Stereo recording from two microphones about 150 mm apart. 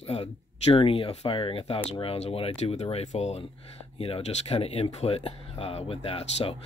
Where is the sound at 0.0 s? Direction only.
40° left (ahead or behind).